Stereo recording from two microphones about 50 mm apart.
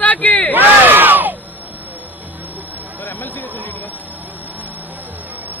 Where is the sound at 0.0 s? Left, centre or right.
Left.